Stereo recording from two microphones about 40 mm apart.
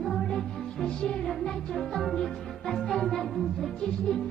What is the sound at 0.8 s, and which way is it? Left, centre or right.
Music, left.